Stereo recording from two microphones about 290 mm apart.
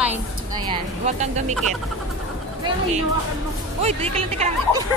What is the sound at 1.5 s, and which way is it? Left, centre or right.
Speech, centre.